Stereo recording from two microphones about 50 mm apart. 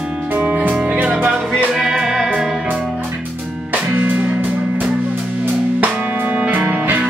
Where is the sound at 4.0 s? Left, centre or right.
Right.